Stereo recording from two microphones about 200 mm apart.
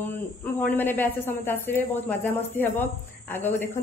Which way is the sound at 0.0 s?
10° left (ahead or behind).